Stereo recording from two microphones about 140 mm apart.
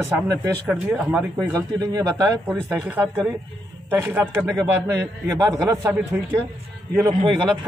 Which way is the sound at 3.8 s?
15° right (ahead or behind).